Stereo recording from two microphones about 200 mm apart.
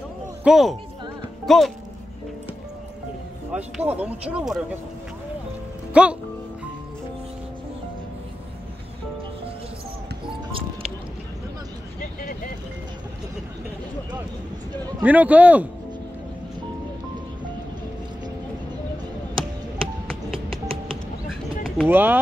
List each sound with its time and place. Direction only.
0.4 s speech: centre (ahead or behind)
3.5 s speech: 5° right (ahead or behind)
6.0 s speech: 5° right (ahead or behind)
12.0 s vehicle: 40° left (ahead or behind)
15.0 s a man's voice: 10° right (ahead or behind)
20.1 s music: centre (ahead or behind)
20.4 s music: 25° right (ahead or behind)
21.3 s a sound: centre (ahead or behind)
21.8 s a man's voice: 10° right (ahead or behind)